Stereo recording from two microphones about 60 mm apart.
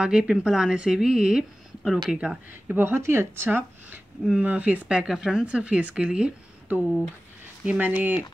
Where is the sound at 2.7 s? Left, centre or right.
Right.